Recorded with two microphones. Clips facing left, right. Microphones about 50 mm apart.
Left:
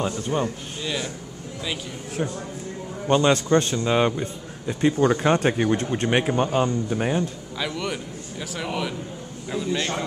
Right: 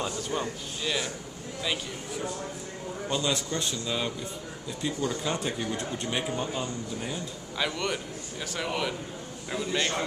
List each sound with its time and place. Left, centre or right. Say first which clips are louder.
0.0 s a man's voice: left 6 dB; left
0.8 s a man's voice: left 2 dB; centre
3.1 s a man's voice: left 12 dB; left
7.5 s a man's voice: even; centre